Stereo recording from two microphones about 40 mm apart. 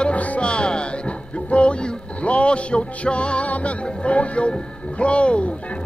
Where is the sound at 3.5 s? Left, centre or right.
Left.